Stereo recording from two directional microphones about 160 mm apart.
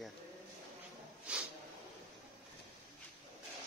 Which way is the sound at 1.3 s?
5° right (ahead or behind).